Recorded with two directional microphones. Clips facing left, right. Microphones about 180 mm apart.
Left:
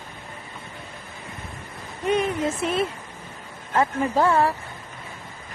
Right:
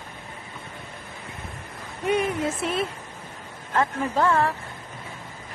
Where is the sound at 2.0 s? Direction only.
5° right (ahead or behind).